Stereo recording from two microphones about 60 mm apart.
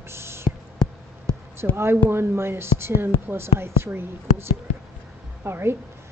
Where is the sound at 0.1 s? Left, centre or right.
Right.